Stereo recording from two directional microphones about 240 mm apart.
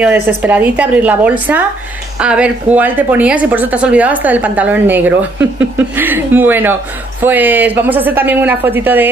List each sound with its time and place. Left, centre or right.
0.0 s a woman's voice: centre